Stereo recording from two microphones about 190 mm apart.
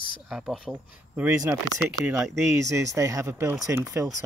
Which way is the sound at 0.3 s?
Centre (ahead or behind).